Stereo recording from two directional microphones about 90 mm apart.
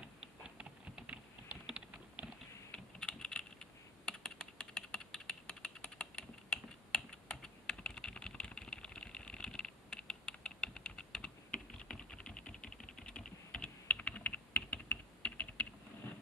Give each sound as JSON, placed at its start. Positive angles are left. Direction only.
{"t": 0.2, "sound": "typing", "side_deg": -10}
{"t": 2.7, "sound": "typing", "side_deg": 10}